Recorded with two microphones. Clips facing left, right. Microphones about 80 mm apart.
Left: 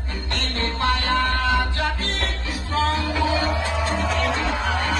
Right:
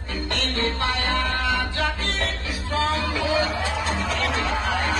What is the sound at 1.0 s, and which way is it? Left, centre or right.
Music, left.